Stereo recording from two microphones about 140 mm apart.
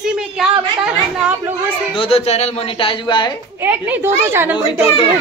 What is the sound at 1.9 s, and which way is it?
Speech, 40° left (ahead or behind).